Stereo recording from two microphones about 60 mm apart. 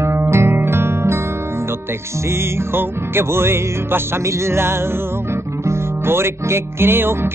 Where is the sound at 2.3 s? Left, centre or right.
Right.